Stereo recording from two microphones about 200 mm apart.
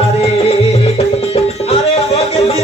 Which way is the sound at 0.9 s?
30° left (ahead or behind).